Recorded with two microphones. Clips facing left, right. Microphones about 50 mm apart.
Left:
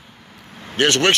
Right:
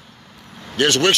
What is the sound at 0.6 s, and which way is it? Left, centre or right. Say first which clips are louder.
Speech: even; left.